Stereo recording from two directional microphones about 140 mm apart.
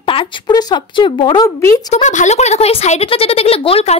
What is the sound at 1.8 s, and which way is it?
Speech, 60° left (ahead or behind).